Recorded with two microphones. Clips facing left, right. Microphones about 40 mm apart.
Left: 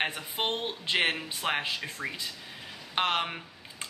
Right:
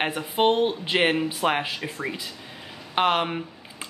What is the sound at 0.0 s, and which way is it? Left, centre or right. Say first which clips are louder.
Speech: right 9 dB; centre.